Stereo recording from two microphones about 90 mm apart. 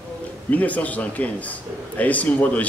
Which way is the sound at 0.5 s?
15° left (ahead or behind).